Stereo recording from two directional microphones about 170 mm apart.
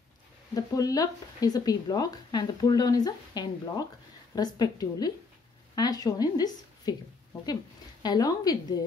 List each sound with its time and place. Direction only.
0.6 s speech: 20° left (ahead or behind)
8.0 s speech: 25° left (ahead or behind)